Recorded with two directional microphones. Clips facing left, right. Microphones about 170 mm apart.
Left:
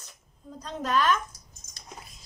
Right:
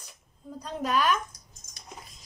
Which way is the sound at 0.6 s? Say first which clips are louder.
Even; 10° right (ahead or behind).